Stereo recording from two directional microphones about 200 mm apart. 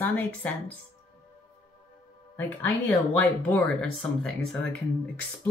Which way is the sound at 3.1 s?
5° left (ahead or behind).